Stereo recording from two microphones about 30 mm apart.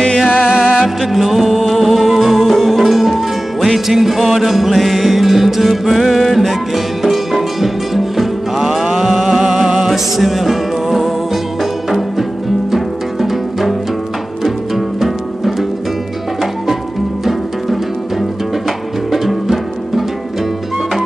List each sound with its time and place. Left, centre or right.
0.4 s music: right
0.7 s music: centre
8.8 s a sound: centre
9.8 s music: centre
12.7 s music: centre
15.0 s music: centre
17.2 s music: centre
19.1 s music: centre